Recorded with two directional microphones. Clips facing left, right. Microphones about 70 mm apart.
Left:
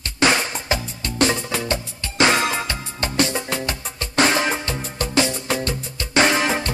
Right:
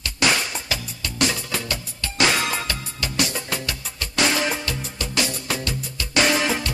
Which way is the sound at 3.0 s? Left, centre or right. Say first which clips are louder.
Left 5 dB; left.